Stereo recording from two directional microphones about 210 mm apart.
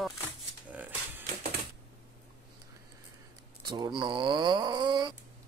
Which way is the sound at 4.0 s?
20° right (ahead or behind).